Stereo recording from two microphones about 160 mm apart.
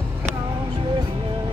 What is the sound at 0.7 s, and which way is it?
Music, 30° right (ahead or behind).